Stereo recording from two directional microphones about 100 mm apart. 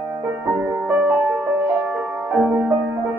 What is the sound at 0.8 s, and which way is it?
Music, 20° right (ahead or behind).